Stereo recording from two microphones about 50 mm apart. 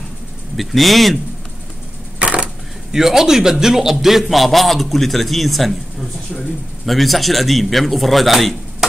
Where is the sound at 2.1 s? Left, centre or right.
Right.